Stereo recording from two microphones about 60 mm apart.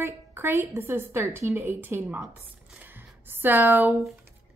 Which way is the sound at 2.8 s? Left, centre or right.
Right.